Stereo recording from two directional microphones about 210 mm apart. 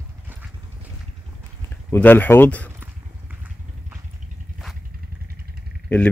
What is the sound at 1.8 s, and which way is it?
Speech, 10° left (ahead or behind).